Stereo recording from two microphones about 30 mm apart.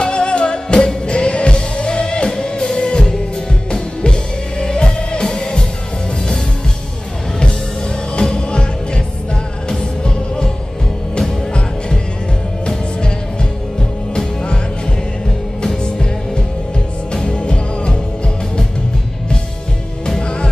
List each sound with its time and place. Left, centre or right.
0.0 s music: left
8.2 s music: left
14.1 s music: left
15.6 s music: left
20.2 s music: left